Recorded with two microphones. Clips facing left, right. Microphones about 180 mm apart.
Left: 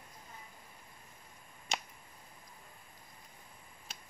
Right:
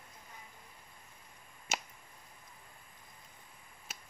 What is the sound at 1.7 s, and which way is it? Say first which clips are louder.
Finger snapping: even; 5° right (ahead or behind).